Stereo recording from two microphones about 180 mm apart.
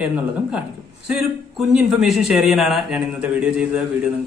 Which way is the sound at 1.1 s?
5° right (ahead or behind).